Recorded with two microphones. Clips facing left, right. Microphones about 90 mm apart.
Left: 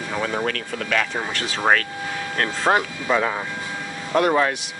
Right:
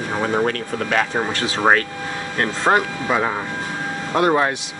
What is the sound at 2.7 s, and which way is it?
Speech, centre (ahead or behind).